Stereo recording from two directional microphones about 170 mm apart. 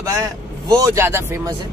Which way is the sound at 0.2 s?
20° right (ahead or behind).